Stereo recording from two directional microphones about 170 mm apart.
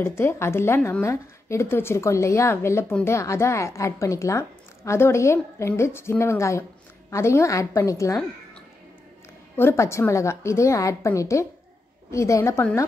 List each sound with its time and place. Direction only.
0.0 s speech: 15° left (ahead or behind)
9.6 s speech: 15° left (ahead or behind)